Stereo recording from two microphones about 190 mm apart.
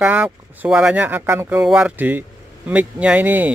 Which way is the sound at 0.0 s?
10° right (ahead or behind).